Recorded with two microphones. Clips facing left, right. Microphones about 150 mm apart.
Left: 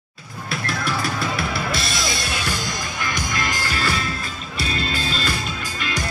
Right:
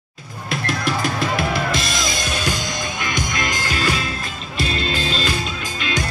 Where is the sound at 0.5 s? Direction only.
20° right (ahead or behind).